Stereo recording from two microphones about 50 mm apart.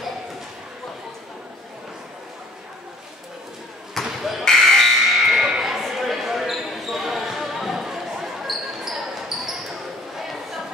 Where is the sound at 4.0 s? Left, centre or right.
Centre.